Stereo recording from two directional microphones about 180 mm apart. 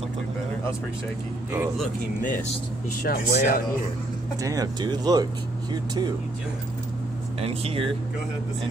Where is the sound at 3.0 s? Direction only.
55° left (ahead or behind).